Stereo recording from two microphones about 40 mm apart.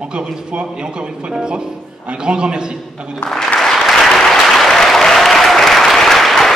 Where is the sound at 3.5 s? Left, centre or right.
Centre.